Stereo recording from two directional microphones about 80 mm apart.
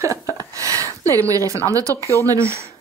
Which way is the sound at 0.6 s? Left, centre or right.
Right.